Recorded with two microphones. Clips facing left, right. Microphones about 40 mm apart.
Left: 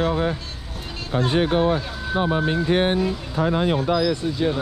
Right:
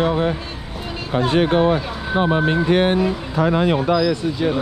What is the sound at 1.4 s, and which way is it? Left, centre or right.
Speech, right.